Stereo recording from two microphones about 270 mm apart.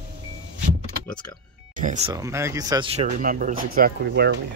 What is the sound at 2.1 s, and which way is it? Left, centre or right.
Speech, centre.